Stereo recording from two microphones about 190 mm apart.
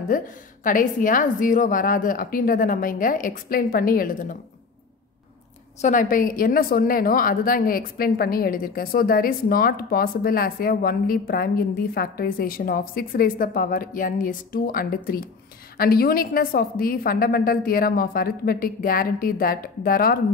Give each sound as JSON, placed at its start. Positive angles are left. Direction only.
{"t": 0.7, "sound": "a woman's voice", "side_deg": 45}
{"t": 5.8, "sound": "a woman's voice", "side_deg": 40}